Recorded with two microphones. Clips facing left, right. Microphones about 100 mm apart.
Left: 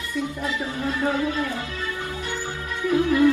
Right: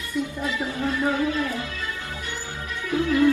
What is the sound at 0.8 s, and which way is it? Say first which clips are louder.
Speech: even; 25° left (ahead or behind).